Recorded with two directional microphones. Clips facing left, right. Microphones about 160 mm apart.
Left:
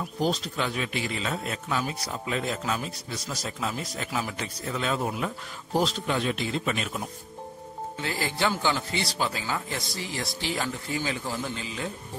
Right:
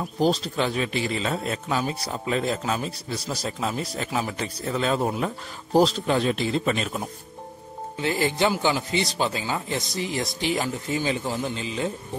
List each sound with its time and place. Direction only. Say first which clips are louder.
0.0 s a man's voice: right 5 dB; 30° right (ahead or behind)
8.0 s a man's voice: right 6 dB; 20° right (ahead or behind)